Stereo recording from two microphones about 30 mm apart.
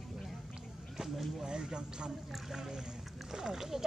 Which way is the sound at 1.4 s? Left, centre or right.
Right.